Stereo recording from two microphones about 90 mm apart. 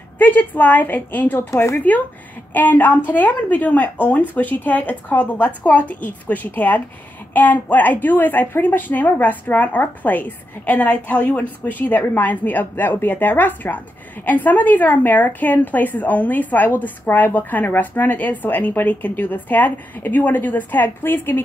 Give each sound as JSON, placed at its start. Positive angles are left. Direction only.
{"t": 0.2, "sound": "a woman's voice", "side_deg": 20}